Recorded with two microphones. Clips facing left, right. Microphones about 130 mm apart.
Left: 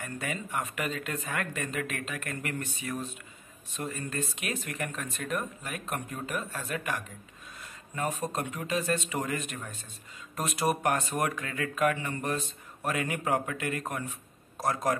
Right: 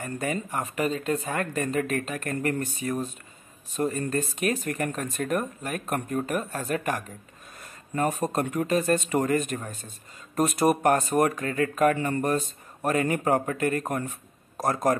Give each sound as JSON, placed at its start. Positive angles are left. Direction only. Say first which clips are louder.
{"t": 0.0, "sound": "speech", "louder": "right 6 dB", "side_deg": -40}